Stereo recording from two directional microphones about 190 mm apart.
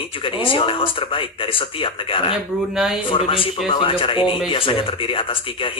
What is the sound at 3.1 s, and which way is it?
Speech, 30° left (ahead or behind).